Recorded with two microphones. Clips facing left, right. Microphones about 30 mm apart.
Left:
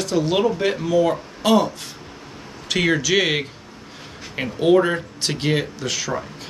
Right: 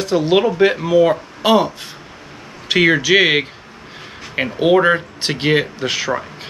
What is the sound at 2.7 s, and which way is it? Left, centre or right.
Speech, right.